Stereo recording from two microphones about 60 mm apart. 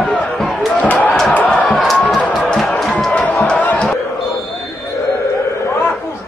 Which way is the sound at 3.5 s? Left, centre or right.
Left.